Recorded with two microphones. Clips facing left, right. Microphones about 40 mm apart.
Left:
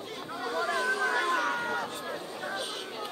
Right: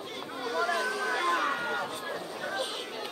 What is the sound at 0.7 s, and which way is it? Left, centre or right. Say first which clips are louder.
Chatter: left 1 dB; left.